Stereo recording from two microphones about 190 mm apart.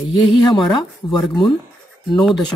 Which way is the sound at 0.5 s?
25° left (ahead or behind).